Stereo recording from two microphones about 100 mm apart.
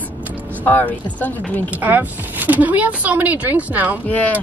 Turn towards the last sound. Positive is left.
turn(degrees=15)  # may be behind; listen again after turning